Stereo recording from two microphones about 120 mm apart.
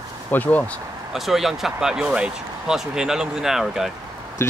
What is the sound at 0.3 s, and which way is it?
Speech, 15° left (ahead or behind).